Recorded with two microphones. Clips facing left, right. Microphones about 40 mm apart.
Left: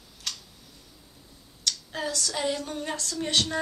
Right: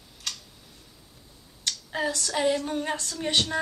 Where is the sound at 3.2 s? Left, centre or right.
Centre.